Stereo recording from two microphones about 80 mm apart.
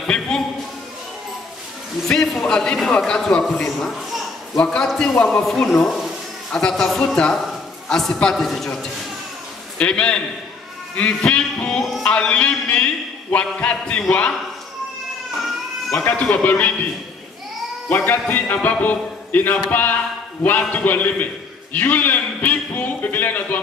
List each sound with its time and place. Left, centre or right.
0.0 s a sound: centre
2.0 s a man's voice: centre
9.8 s a man's voice: centre
16.1 s a man's voice: left
17.8 s a man's voice: left